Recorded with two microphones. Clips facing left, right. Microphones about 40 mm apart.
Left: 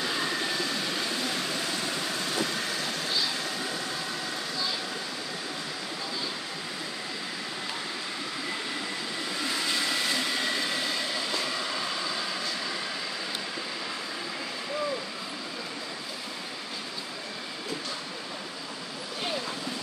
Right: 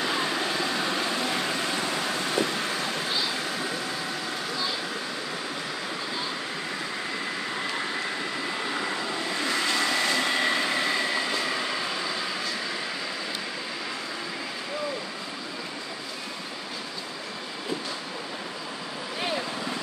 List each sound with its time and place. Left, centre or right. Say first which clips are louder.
0.0 s vehicle: right 3 dB; right
9.8 s vehicle: right 4 dB; centre
10.2 s vehicle: right 4 dB; right; by 12.4 s centre